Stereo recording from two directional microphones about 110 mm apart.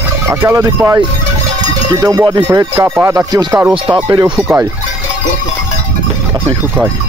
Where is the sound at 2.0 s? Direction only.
30° right (ahead or behind).